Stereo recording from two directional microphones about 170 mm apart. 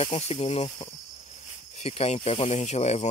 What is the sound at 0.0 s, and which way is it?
Speech, 35° left (ahead or behind).